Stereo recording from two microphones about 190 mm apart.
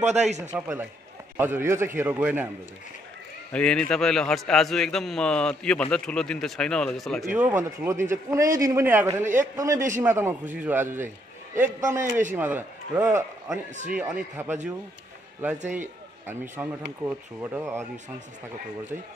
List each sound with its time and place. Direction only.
0.0 s a man's voice: 35° right (ahead or behind)
0.6 s a man's voice: 10° right (ahead or behind)
3.5 s a man's voice: 5° left (ahead or behind); by 12.0 s 15° right (ahead or behind)
12.0 s a man's voice: 40° right (ahead or behind)
12.4 s a man's voice: 10° right (ahead or behind)
16.3 s a man's voice: 10° right (ahead or behind)